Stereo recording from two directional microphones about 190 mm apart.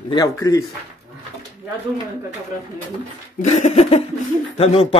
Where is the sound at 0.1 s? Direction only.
20° left (ahead or behind).